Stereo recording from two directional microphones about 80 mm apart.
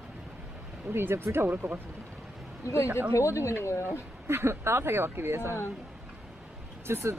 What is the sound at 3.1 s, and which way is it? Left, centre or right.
Speech, left.